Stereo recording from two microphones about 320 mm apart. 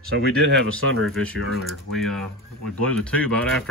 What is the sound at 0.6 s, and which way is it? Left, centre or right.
Speech, right.